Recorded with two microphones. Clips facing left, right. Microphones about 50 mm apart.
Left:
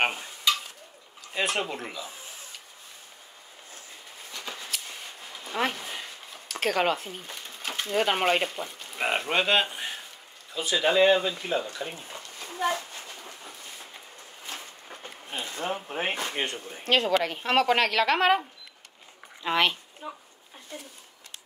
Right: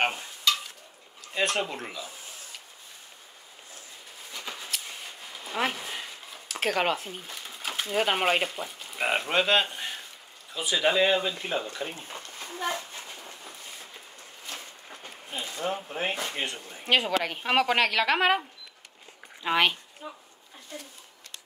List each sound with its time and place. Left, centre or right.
0.0 s stir: centre
1.3 s a woman's voice: centre
4.3 s a sound: centre
6.5 s speech: centre
10.5 s a woman's voice: centre
11.8 s speech: right
13.1 s a sound: centre
15.3 s speech: left
16.8 s a child's voice: centre
19.4 s a child's voice: centre